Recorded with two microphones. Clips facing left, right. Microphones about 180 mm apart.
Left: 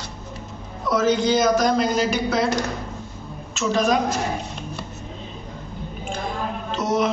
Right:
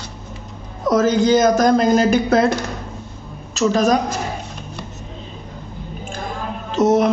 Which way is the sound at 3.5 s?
40° right (ahead or behind).